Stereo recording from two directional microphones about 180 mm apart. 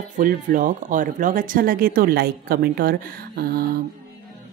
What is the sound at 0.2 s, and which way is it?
Speech, 50° right (ahead or behind).